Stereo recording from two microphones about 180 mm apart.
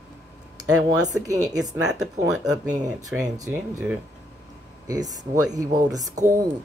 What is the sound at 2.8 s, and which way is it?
Speech, 20° right (ahead or behind).